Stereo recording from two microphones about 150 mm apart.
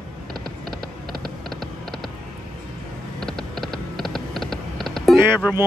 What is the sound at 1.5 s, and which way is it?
Music, centre (ahead or behind).